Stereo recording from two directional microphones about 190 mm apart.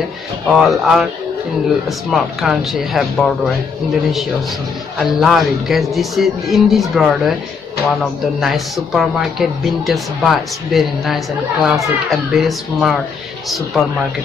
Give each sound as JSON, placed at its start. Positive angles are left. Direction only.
{"t": 0.5, "sound": "speech", "side_deg": 0}
{"t": 5.0, "sound": "speech", "side_deg": 0}